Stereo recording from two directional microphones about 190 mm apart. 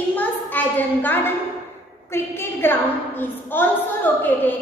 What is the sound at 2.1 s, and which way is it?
A woman's voice, 10° left (ahead or behind).